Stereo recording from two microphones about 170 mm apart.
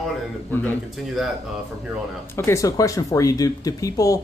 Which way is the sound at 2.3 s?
15° left (ahead or behind).